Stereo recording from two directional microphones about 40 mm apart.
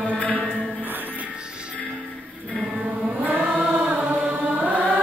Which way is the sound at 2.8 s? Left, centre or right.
Centre.